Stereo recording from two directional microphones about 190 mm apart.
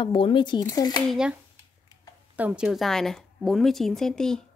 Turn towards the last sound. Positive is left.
turn(degrees=5)  # may be behind; listen again after turning